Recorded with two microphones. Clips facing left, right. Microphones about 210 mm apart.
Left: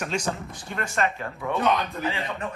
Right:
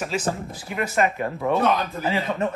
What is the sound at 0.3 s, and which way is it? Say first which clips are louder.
Speech: right 3 dB; 5° right (ahead or behind).